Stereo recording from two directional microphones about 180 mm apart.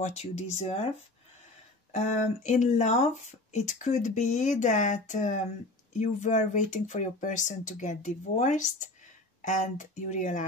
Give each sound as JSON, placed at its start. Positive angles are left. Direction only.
{"t": 0.0, "sound": "speech", "side_deg": 40}
{"t": 1.9, "sound": "speech", "side_deg": 40}